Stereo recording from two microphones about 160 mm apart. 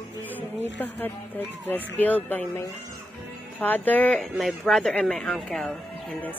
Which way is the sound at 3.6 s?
10° left (ahead or behind).